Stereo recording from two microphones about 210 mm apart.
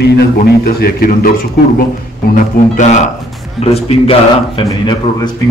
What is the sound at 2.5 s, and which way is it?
Speech, 45° left (ahead or behind).